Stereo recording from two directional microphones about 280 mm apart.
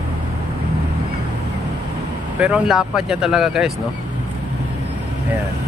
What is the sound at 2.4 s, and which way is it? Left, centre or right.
Speech, centre.